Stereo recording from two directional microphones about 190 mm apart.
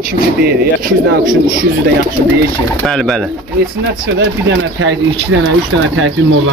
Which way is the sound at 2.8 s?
Centre (ahead or behind).